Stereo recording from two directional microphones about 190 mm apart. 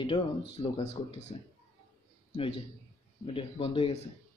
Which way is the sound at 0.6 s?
35° left (ahead or behind).